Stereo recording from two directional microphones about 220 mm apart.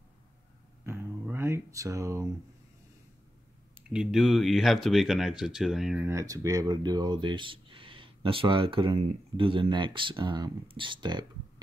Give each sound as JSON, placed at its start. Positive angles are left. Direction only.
{"t": 0.8, "sound": "a sound", "side_deg": -10}
{"t": 3.7, "sound": "speech", "side_deg": -5}
{"t": 6.0, "sound": "speech", "side_deg": -15}